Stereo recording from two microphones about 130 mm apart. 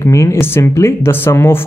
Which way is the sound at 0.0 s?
20° left (ahead or behind).